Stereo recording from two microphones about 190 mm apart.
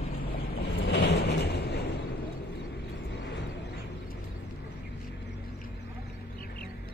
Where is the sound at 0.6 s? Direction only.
65° left (ahead or behind).